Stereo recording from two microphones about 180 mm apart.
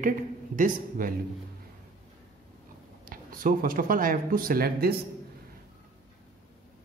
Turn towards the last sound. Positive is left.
turn(degrees=-60)  # may be behind; listen again after turning